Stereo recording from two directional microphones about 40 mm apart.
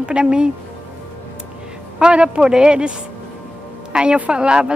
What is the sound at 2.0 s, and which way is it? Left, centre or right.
Speech, right.